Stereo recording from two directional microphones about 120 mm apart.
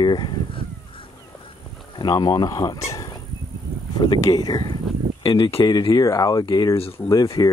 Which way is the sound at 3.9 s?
35° left (ahead or behind).